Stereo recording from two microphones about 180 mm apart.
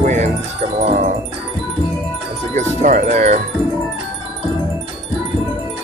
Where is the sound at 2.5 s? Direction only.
40° right (ahead or behind).